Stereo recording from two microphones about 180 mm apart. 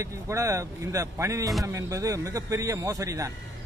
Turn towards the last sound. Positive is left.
turn(degrees=-15)  # may be behind; listen again after turning